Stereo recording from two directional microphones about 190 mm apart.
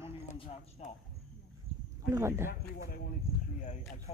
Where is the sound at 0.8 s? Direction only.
40° left (ahead or behind).